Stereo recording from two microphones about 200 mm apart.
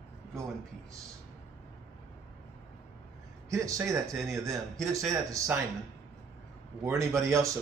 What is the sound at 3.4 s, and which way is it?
Speech, 15° right (ahead or behind).